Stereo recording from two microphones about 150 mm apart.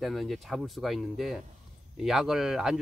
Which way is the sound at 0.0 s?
Centre (ahead or behind).